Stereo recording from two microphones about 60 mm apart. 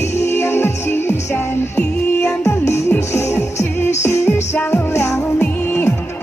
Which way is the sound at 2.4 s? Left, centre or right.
Left.